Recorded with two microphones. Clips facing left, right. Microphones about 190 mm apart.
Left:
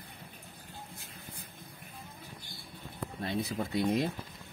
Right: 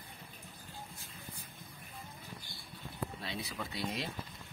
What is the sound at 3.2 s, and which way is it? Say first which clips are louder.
Speech: left 8 dB; 50° left (ahead or behind).